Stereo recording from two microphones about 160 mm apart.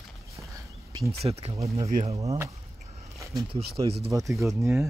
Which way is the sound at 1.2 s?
40° right (ahead or behind).